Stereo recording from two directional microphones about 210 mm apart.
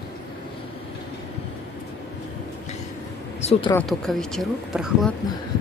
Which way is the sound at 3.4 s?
30° left (ahead or behind).